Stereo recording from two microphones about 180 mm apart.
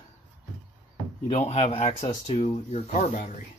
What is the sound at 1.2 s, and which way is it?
Speech, 35° left (ahead or behind).